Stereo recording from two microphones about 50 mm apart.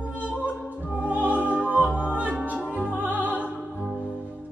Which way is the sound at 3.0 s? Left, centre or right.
Right.